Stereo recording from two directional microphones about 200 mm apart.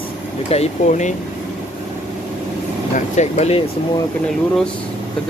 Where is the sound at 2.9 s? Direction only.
35° left (ahead or behind).